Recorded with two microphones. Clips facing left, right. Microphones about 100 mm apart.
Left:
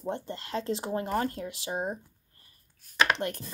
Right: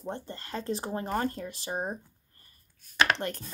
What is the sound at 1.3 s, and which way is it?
Speech, 90° left.